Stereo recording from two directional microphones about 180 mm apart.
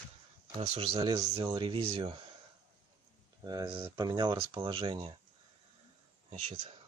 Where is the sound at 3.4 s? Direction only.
20° right (ahead or behind).